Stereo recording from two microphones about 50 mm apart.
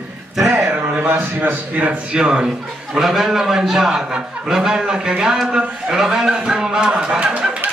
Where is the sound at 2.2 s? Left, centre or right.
Centre.